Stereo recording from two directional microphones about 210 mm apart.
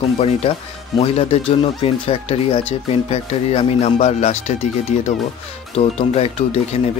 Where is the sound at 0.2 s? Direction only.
30° left (ahead or behind).